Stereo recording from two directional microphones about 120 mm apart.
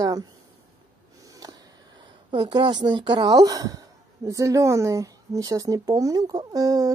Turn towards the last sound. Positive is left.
turn(degrees=-30)  # may be behind; listen again after turning